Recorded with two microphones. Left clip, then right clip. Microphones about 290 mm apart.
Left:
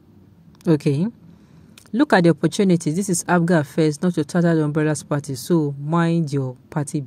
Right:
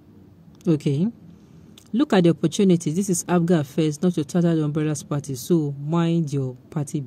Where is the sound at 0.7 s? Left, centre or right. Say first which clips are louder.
Left 3 dB; centre.